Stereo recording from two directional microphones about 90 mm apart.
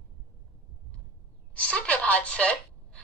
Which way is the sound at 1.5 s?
15° left (ahead or behind).